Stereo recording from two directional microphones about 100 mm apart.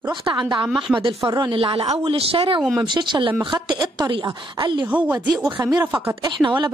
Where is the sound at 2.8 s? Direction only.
50° right (ahead or behind).